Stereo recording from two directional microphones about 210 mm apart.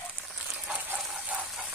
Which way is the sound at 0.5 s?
5° right (ahead or behind).